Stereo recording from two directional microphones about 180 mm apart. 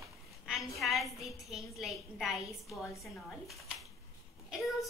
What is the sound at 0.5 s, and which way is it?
A woman's voice, centre (ahead or behind).